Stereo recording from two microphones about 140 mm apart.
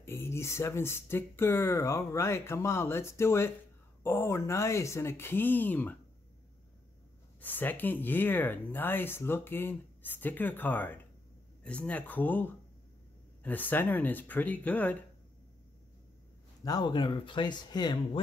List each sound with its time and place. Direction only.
0.0 s speech: 15° left (ahead or behind)
7.3 s speech: 15° left (ahead or behind)
16.6 s speech: 30° left (ahead or behind)